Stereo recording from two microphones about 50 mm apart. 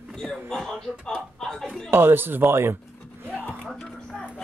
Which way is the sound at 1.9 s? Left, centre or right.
Right.